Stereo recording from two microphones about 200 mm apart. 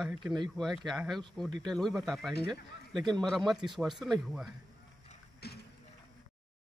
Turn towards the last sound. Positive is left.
turn(degrees=55)  # may be behind; listen again after turning